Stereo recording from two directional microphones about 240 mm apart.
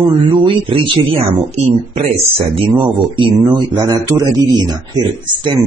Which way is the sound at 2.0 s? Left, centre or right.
Right.